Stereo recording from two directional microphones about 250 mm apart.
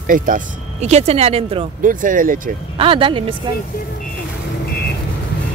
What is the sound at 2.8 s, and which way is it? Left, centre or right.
Speech, right.